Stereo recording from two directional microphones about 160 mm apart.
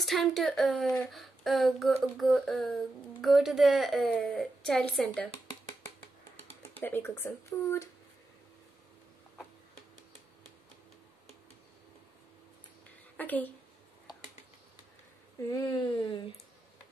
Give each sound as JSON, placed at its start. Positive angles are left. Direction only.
{"t": 0.0, "sound": "speech", "side_deg": 0}
{"t": 6.8, "sound": "speech", "side_deg": 15}
{"t": 13.2, "sound": "speech", "side_deg": 10}
{"t": 15.5, "sound": "speech", "side_deg": 30}